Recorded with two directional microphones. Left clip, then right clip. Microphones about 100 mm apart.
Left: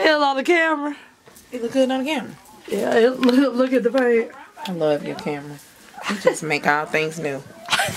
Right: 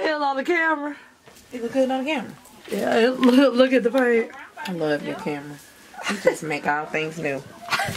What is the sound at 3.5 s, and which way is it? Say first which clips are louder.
Speech: right 1 dB; 25° right (ahead or behind).